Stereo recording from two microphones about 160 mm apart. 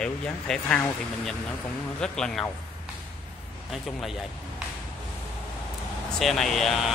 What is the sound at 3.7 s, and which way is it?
Speech, centre (ahead or behind).